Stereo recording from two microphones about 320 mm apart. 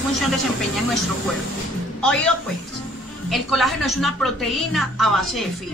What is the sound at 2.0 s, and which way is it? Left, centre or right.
A woman's voice, centre.